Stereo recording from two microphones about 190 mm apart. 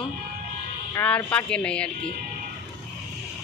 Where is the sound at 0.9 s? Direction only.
5° left (ahead or behind).